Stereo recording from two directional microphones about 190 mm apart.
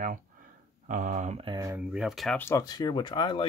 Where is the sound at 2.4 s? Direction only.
15° left (ahead or behind).